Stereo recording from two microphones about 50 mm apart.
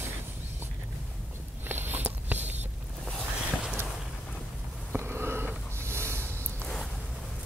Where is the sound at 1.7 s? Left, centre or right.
Right.